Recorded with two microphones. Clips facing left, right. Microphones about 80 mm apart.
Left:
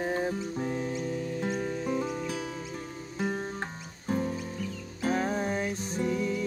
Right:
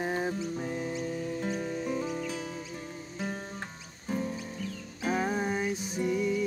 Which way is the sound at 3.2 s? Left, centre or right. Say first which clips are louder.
Left 5 dB; left.